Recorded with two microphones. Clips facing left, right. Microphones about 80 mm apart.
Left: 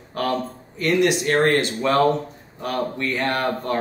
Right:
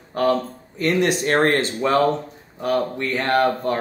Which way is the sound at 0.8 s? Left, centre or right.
Right.